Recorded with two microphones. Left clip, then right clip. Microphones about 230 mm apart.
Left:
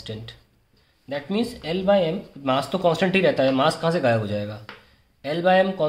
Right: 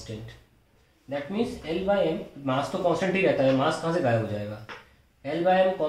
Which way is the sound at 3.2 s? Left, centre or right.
Left.